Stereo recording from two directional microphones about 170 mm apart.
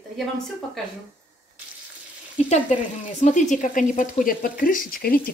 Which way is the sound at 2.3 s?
45° left (ahead or behind).